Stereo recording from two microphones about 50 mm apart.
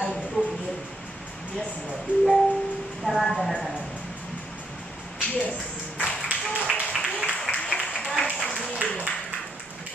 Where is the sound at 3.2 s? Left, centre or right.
Centre.